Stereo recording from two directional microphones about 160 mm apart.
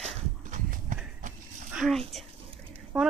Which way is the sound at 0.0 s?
55° right (ahead or behind).